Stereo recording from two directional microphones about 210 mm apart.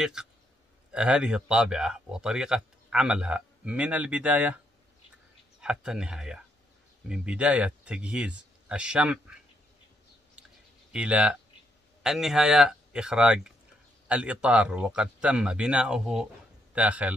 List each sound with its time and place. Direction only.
0.0 s speech: 5° right (ahead or behind)
5.6 s speech: 5° right (ahead or behind)
10.9 s a man's voice: 5° right (ahead or behind)